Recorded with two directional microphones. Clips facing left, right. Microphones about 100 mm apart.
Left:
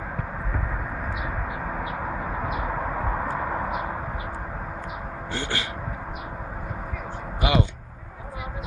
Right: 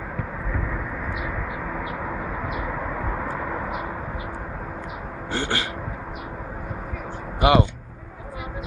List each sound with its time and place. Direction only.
5.3 s speech: 60° right (ahead or behind)
7.3 s speech: 55° right (ahead or behind)